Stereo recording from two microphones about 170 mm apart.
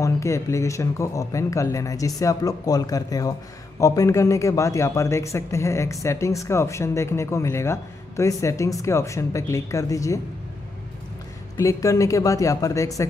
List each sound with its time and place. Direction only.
0.0 s speech: 15° left (ahead or behind)
11.5 s speech: 20° left (ahead or behind)